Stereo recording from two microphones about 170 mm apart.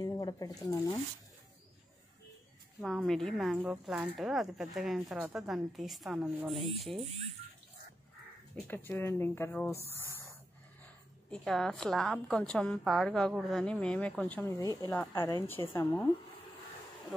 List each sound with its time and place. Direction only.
0.0 s speech: 25° left (ahead or behind)
2.8 s a woman's voice: centre (ahead or behind)
8.6 s a woman's voice: 15° left (ahead or behind)
9.9 s a sound: 15° left (ahead or behind)
11.2 s a woman's voice: 5° left (ahead or behind)
14.6 s a woman's voice: 20° left (ahead or behind)